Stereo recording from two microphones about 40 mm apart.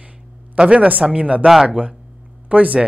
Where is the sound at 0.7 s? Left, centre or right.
Right.